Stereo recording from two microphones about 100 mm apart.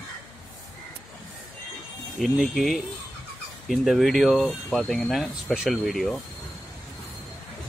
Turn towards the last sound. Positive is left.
turn(degrees=0)  # may be behind; listen again after turning